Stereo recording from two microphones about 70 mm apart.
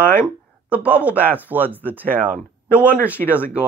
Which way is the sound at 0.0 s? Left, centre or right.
Left.